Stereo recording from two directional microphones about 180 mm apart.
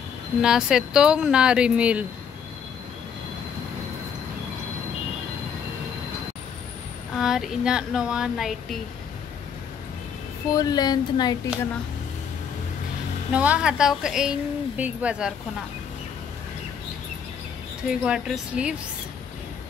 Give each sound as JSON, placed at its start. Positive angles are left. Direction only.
{"t": 0.4, "sound": "a woman's voice", "side_deg": -5}
{"t": 7.2, "sound": "a woman's voice", "side_deg": -5}
{"t": 10.5, "sound": "speech", "side_deg": 20}
{"t": 13.3, "sound": "a woman's voice", "side_deg": -5}
{"t": 18.0, "sound": "a woman's voice", "side_deg": -5}